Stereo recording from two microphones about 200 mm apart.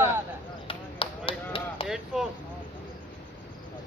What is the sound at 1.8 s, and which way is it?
Chop, 5° right (ahead or behind).